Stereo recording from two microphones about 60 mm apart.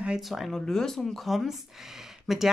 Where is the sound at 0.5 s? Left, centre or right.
Centre.